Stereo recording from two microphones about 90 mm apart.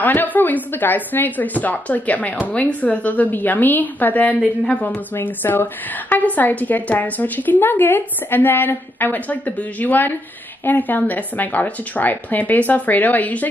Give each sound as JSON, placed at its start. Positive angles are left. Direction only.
{"t": 0.0, "sound": "a woman's voice", "side_deg": 20}